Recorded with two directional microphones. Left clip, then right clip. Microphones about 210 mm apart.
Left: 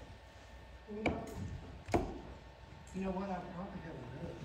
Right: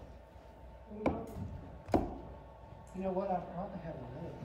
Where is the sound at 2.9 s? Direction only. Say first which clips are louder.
Right 4 dB; 45° right (ahead or behind).